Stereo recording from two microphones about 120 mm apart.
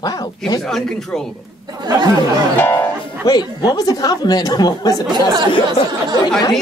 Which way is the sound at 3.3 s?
35° left (ahead or behind).